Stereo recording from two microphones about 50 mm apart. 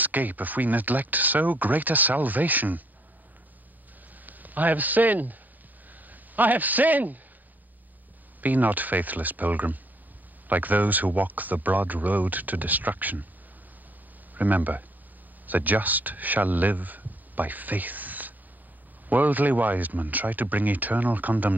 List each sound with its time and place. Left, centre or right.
0.0 s speech: right
4.3 s speech: right
5.9 s a sound: right
8.4 s speech: right
14.3 s speech: right